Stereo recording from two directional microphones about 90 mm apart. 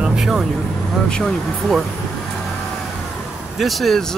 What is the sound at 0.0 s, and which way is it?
Speech, 5° right (ahead or behind).